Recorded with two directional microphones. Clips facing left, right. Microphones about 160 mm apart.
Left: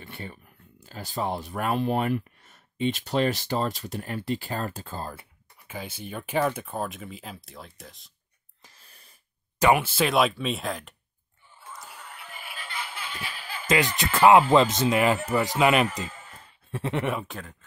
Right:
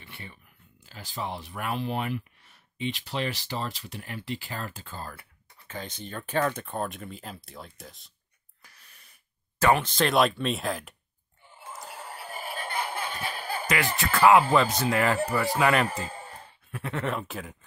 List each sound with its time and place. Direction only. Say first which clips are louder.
0.0 s a sound: left 6 dB; 45° left (ahead or behind)
0.8 s speech: left 5 dB; 40° left (ahead or behind)
5.6 s speech: left 1 dB; 10° left (ahead or behind)
8.6 s wheeze: left 2 dB; 30° left (ahead or behind)
9.6 s speech: left 2 dB; 10° left (ahead or behind)
11.5 s a sound: right 2 dB; 25° right (ahead or behind)
11.8 s music: right 4 dB; 35° right (ahead or behind)
13.9 s speech: left 2 dB; 20° left (ahead or behind)
15.9 s a sound: right 1 dB; 35° right (ahead or behind)
16.7 s speech: left 3 dB; 20° left (ahead or behind)
17.2 s speech: right 1 dB; 5° right (ahead or behind)